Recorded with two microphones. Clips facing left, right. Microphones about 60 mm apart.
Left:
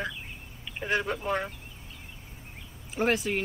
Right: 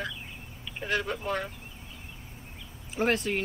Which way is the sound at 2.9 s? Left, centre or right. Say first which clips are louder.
Even; centre.